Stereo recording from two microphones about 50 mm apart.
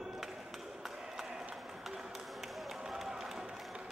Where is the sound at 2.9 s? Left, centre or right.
Centre.